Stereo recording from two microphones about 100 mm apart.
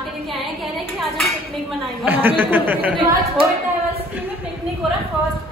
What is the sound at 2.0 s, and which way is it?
Speech, 20° right (ahead or behind).